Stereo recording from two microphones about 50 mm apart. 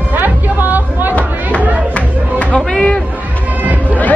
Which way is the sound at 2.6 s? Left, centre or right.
Centre.